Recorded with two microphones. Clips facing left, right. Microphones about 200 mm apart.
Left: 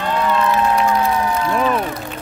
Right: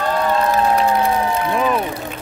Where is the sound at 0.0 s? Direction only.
40° right (ahead or behind).